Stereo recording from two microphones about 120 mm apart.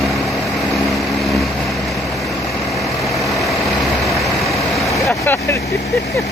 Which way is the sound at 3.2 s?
Centre (ahead or behind).